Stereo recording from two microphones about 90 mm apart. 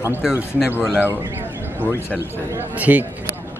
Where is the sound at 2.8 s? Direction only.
20° right (ahead or behind).